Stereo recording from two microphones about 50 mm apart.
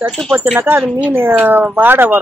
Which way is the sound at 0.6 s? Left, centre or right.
Right.